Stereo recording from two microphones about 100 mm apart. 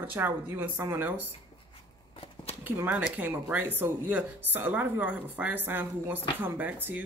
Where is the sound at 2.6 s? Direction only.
20° right (ahead or behind).